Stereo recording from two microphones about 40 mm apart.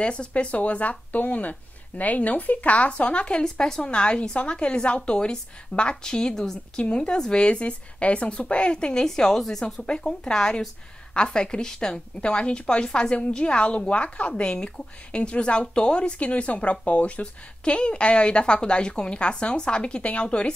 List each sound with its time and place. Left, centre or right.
0.0 s speech: left
3.4 s a woman's voice: centre
9.0 s speech: centre
10.2 s a woman's voice: left